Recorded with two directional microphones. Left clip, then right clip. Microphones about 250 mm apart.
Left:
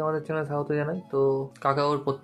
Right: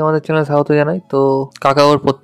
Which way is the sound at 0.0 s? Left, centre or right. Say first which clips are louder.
Right 13 dB; right.